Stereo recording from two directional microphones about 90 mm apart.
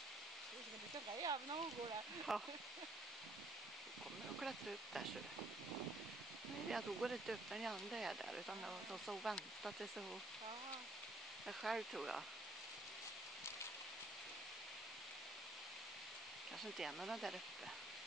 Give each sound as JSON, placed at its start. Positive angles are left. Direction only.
{"t": 1.1, "sound": "speech", "side_deg": -60}
{"t": 2.3, "sound": "speech", "side_deg": 0}
{"t": 4.4, "sound": "speech", "side_deg": 0}
{"t": 6.7, "sound": "speech", "side_deg": 0}
{"t": 11.4, "sound": "speech", "side_deg": -5}
{"t": 16.7, "sound": "speech", "side_deg": -5}